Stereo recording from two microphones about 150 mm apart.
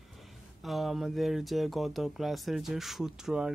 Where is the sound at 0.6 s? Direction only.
Centre (ahead or behind).